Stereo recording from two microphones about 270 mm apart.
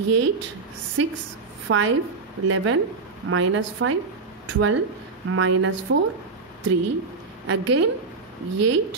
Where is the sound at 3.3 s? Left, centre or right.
Right.